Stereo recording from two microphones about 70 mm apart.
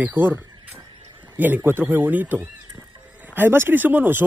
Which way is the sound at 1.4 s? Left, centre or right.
Right.